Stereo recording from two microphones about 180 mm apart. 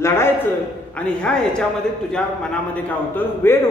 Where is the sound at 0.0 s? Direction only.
15° left (ahead or behind).